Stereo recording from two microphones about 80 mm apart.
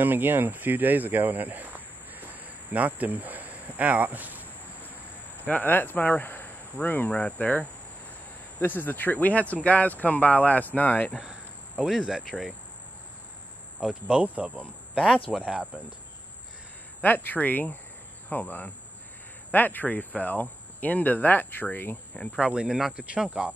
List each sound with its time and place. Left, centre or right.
0.0 s speech: right
5.4 s speech: left
11.1 s speech: centre
13.7 s speech: centre
17.0 s speech: left
22.4 s speech: centre